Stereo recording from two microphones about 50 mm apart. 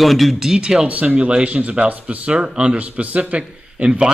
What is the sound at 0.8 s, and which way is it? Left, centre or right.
Speech, right.